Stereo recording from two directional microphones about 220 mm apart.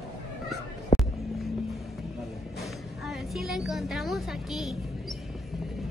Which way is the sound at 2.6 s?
Centre (ahead or behind).